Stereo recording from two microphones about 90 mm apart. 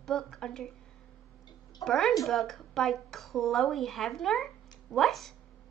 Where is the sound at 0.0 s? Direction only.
5° left (ahead or behind).